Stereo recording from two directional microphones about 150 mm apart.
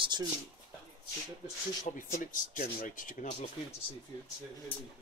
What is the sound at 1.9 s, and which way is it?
Speech, 55° left (ahead or behind).